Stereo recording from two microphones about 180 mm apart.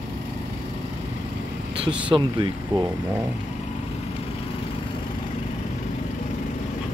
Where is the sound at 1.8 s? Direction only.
30° right (ahead or behind).